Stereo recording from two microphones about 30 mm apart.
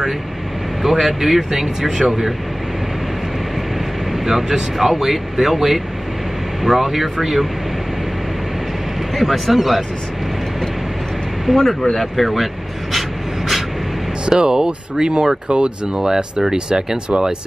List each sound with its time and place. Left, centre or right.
0.8 s speech: centre
4.1 s speech: centre
9.1 s speech: centre
11.5 s speech: centre
11.9 s speech: centre
14.3 s speech: right